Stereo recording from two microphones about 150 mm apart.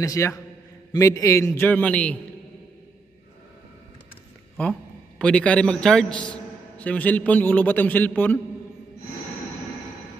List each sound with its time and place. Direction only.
0.0 s a man's voice: 20° left (ahead or behind)
5.2 s a man's voice: 10° left (ahead or behind)